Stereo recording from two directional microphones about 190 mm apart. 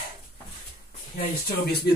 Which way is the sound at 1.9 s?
55° left (ahead or behind).